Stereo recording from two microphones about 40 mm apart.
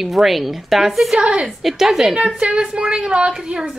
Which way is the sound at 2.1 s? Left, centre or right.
Right.